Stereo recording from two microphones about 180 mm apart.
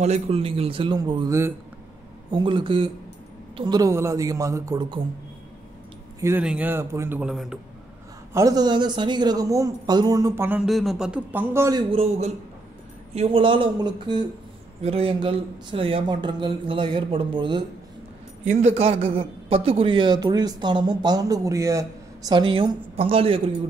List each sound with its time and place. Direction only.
0.0 s a man's voice: 35° right (ahead or behind)
6.2 s a man's voice: 10° right (ahead or behind)
8.3 s a man's voice: 20° right (ahead or behind)
11.9 s a man's voice: 35° right (ahead or behind)
18.4 s a man's voice: 40° right (ahead or behind)